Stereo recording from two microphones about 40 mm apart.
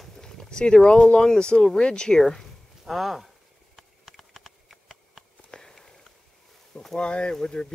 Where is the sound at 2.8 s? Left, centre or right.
Centre.